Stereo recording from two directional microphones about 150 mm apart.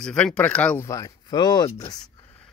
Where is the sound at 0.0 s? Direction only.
5° left (ahead or behind).